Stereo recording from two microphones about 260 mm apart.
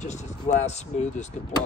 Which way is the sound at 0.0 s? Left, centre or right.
Left.